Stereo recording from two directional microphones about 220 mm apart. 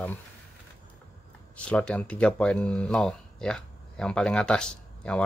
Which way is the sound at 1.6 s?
5° left (ahead or behind).